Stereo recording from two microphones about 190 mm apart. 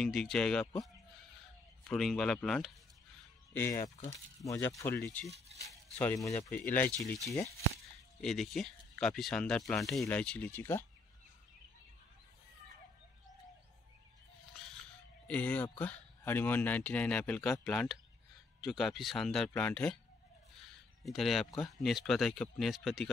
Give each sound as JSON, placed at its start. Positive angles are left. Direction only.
{"t": 0.0, "sound": "speech", "side_deg": 0}
{"t": 1.9, "sound": "speech", "side_deg": 0}
{"t": 3.5, "sound": "speech", "side_deg": 15}
{"t": 8.2, "sound": "speech", "side_deg": 0}
{"t": 15.2, "sound": "speech", "side_deg": 5}
{"t": 21.0, "sound": "speech", "side_deg": 0}